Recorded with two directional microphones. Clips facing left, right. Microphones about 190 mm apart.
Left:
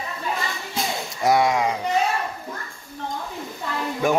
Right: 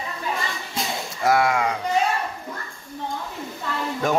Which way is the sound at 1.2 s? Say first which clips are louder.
Left 1 dB; 15° left (ahead or behind).